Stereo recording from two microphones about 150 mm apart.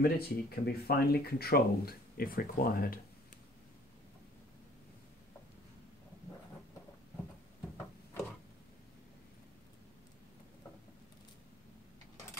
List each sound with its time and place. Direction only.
0.0 s speech: 90° left; by 3.0 s 75° left (ahead or behind)